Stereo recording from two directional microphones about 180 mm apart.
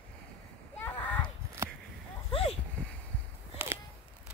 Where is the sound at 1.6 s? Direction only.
15° right (ahead or behind).